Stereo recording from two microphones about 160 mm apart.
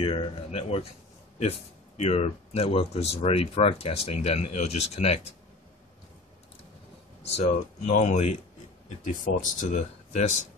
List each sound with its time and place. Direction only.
0.0 s speech: 35° left (ahead or behind)
2.0 s speech: 40° left (ahead or behind)
7.2 s speech: 40° left (ahead or behind)